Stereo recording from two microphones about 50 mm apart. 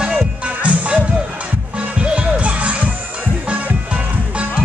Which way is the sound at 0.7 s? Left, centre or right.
Right.